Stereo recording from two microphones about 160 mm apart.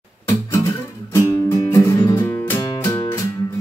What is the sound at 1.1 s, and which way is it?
Music, 20° left (ahead or behind).